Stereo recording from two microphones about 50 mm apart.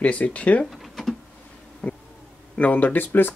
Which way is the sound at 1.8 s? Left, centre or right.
Left.